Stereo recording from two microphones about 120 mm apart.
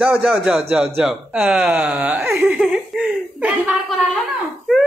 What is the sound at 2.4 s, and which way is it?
Chuckle, 5° right (ahead or behind).